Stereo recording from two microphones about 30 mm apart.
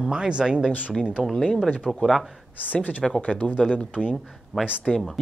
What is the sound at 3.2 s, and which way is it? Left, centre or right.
Speech, left.